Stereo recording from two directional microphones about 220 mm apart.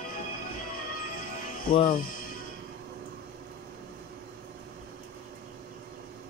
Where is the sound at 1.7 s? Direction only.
25° left (ahead or behind).